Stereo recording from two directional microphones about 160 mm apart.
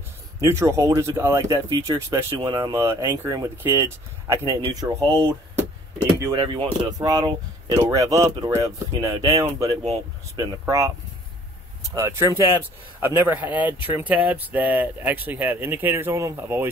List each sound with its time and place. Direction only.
0.4 s speech: 20° right (ahead or behind)
4.6 s speech: 30° right (ahead or behind)
6.3 s speech: 30° right (ahead or behind)
11.9 s speech: 15° right (ahead or behind)